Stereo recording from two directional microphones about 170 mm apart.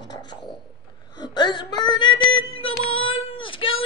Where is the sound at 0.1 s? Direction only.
25° left (ahead or behind).